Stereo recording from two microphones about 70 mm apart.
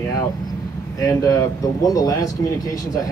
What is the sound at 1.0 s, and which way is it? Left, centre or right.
Speech, left.